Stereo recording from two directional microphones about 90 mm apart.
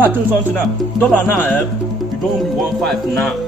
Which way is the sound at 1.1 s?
20° left (ahead or behind).